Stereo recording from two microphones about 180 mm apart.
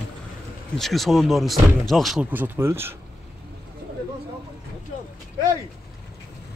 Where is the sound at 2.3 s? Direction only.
10° right (ahead or behind).